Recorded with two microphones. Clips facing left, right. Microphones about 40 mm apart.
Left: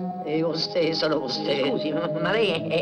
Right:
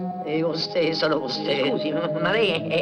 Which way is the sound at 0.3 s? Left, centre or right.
Centre.